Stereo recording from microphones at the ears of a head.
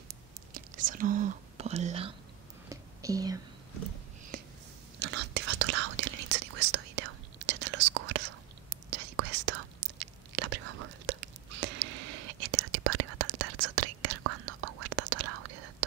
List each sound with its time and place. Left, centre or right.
0.1 s whispering: right
4.9 s whispering: right